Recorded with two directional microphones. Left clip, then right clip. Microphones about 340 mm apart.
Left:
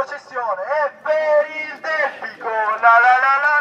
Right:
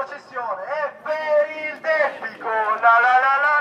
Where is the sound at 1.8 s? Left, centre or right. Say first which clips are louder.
Right 1 dB; left.